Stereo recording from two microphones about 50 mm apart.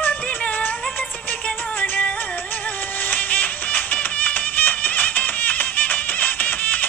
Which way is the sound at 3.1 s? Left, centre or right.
Left.